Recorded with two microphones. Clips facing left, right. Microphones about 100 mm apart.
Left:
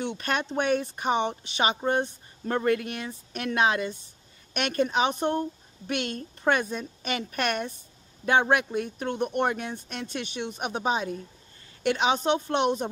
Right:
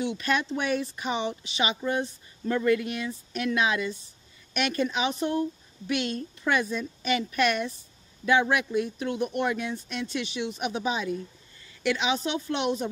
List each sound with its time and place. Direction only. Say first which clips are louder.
0.2 s speech: even; 50° left (ahead or behind)